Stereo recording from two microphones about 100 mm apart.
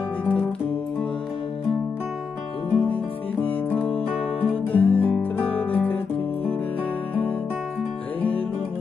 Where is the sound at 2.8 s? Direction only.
15° left (ahead or behind).